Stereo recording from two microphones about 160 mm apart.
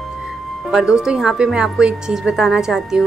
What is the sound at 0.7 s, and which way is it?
A woman's voice, 5° right (ahead or behind).